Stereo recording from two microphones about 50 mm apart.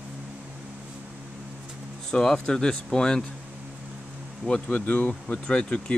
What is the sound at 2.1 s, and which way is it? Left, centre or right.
Speech, centre.